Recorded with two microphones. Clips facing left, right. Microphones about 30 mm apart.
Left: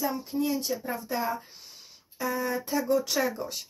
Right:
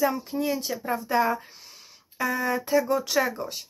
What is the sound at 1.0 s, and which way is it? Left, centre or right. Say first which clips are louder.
Speech: right 10 dB; right.